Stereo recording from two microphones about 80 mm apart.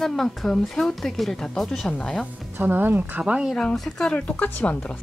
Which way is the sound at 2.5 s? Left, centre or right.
Right.